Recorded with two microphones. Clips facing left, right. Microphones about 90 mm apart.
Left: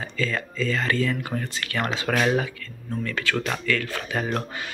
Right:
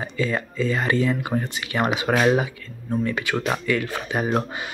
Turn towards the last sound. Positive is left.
turn(degrees=-20)  # may be behind; listen again after turning